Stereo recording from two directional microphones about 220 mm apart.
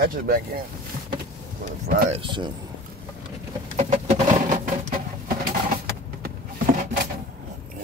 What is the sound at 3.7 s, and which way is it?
Pigeon, 30° right (ahead or behind).